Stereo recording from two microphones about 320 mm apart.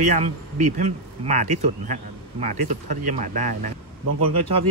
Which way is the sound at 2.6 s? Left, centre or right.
Right.